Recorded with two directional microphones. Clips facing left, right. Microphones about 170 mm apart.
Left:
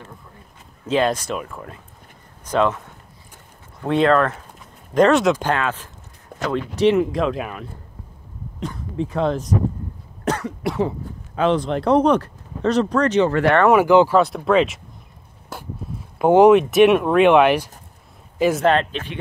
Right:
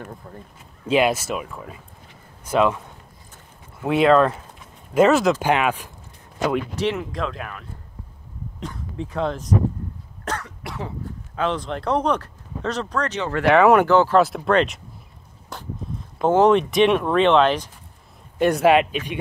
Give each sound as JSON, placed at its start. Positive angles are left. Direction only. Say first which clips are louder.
{"t": 0.8, "sound": "speech", "louder": "even", "side_deg": -10}
{"t": 3.8, "sound": "speech", "louder": "right 1 dB", "side_deg": -10}
{"t": 7.0, "sound": "speech", "louder": "left 8 dB", "side_deg": 10}
{"t": 9.1, "sound": "speech", "louder": "left 3 dB", "side_deg": 30}
{"t": 10.2, "sound": "cough", "louder": "left 8 dB", "side_deg": 10}
{"t": 11.3, "sound": "speech", "louder": "left 6 dB", "side_deg": 15}
{"t": 13.8, "sound": "speech", "louder": "left 3 dB", "side_deg": 15}
{"t": 14.1, "sound": "speech", "louder": "left 1 dB", "side_deg": 0}
{"t": 15.5, "sound": "a sound", "louder": "left 2 dB", "side_deg": 5}
{"t": 16.2, "sound": "speech", "louder": "left 4 dB", "side_deg": 10}
{"t": 18.7, "sound": "speech", "louder": "right 2 dB", "side_deg": -10}